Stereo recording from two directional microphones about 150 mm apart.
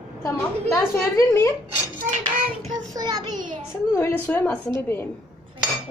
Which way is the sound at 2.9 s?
25° right (ahead or behind).